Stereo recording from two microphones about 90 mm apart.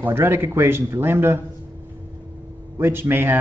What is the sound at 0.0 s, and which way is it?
Speech, 25° right (ahead or behind).